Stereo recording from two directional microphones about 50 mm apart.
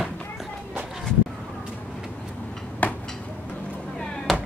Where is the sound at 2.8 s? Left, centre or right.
Left.